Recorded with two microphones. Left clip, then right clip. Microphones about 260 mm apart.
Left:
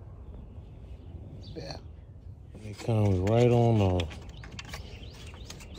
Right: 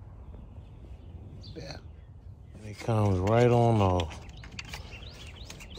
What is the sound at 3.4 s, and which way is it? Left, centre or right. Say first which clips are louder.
Speech: right 1 dB; centre.